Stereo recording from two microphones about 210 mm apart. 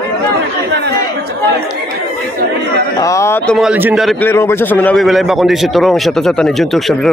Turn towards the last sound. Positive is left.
turn(degrees=0)  # may be behind; listen again after turning